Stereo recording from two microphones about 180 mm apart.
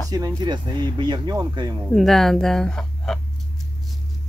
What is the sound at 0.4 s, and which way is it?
Speech, 25° right (ahead or behind).